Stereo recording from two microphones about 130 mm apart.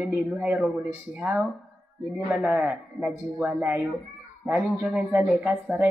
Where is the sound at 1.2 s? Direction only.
Centre (ahead or behind).